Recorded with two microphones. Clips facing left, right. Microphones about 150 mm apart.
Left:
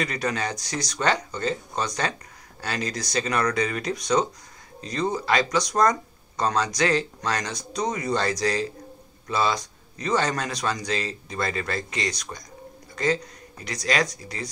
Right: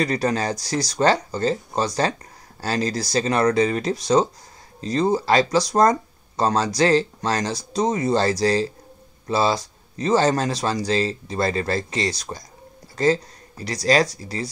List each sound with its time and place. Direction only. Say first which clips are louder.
0.0 s speech: right 5 dB; 35° right (ahead or behind)